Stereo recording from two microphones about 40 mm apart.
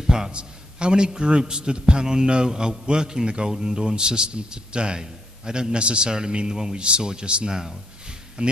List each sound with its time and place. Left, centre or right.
0.1 s a man's voice: right